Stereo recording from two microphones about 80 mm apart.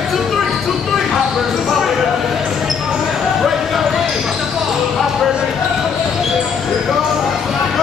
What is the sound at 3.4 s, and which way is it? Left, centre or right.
Basketball bounce, centre.